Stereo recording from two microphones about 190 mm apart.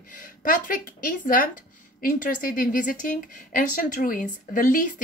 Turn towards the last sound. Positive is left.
turn(degrees=45)  # may be behind; listen again after turning